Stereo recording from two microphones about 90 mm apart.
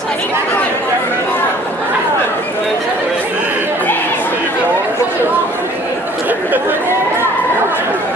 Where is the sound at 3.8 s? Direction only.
20° left (ahead or behind).